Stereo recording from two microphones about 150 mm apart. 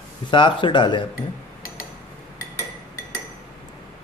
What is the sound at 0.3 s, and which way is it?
Speech, 35° left (ahead or behind).